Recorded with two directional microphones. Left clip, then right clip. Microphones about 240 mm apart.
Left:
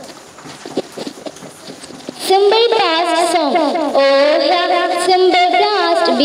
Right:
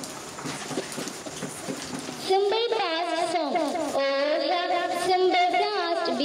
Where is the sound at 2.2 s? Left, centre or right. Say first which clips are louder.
Left 13 dB; left.